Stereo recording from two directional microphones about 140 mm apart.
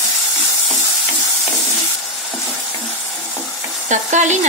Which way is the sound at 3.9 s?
60° right (ahead or behind).